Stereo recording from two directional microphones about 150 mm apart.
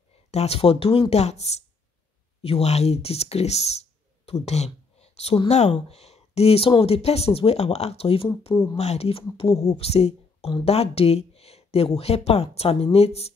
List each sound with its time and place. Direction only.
0.3 s speech: 45° left (ahead or behind)